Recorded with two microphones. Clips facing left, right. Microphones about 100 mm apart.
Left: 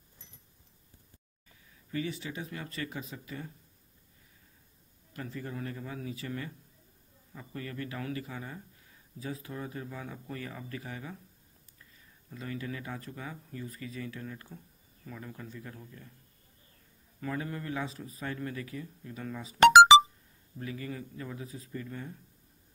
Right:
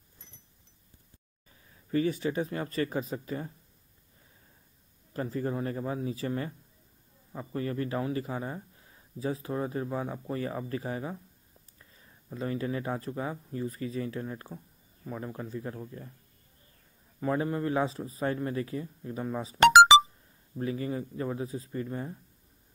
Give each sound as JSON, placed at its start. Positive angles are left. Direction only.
{"t": 1.9, "sound": "a man's voice", "side_deg": -40}
{"t": 5.1, "sound": "a man's voice", "side_deg": -35}
{"t": 17.2, "sound": "a man's voice", "side_deg": -30}
{"t": 20.5, "sound": "a man's voice", "side_deg": -30}